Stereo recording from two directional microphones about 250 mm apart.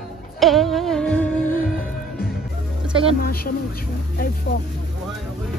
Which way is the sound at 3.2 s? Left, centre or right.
Left.